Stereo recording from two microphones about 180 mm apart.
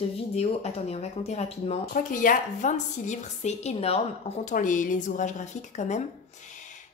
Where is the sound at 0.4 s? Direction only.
35° left (ahead or behind).